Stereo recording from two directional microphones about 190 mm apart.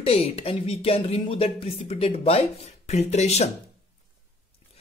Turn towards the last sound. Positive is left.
turn(degrees=35)  # may be behind; listen again after turning